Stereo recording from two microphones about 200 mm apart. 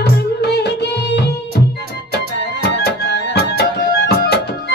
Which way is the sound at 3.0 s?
60° left (ahead or behind).